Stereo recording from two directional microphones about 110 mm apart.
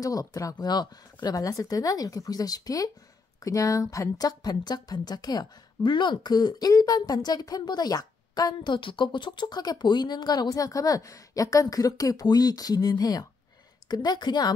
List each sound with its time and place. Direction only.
0.0 s a woman's voice: 30° left (ahead or behind)